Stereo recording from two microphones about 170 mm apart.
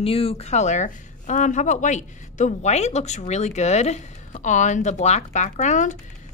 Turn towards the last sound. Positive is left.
turn(degrees=45)  # may be behind; listen again after turning